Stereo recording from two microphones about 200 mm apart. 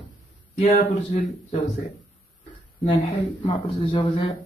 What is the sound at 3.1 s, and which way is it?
Speech, 25° left (ahead or behind).